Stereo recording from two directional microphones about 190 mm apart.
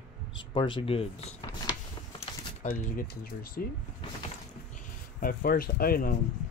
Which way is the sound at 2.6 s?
50° left (ahead or behind).